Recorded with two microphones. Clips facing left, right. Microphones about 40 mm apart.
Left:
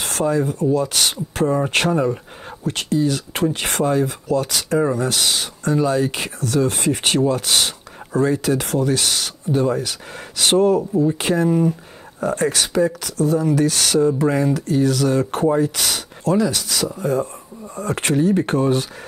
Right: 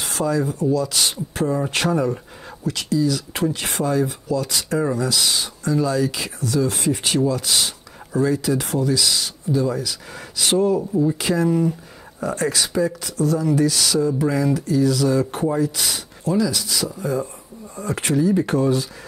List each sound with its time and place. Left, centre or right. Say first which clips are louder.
0.2 s speech: left 2 dB; left
4.6 s speech: left 3 dB; left
4.9 s speech: left 1 dB; left
10.8 s speech: left 2 dB; left
11.1 s speech: left 2 dB; left